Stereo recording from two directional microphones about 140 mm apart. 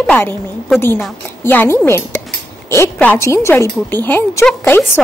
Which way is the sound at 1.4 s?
15° left (ahead or behind).